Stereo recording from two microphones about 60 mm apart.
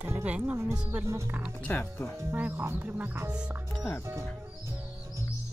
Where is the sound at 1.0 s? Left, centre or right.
Right.